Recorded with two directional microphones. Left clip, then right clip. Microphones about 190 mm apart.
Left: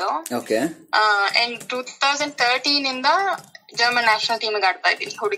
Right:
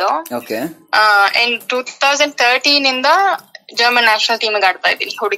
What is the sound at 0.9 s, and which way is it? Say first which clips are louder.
Speech: right 7 dB; 35° right (ahead or behind).